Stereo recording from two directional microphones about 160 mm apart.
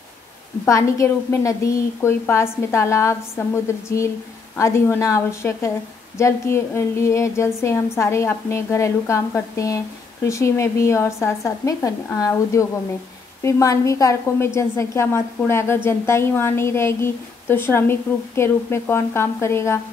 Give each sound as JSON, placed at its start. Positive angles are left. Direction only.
{"t": 0.7, "sound": "a woman's voice", "side_deg": 20}